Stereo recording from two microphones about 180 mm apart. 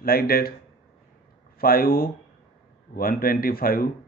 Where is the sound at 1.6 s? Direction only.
55° left (ahead or behind).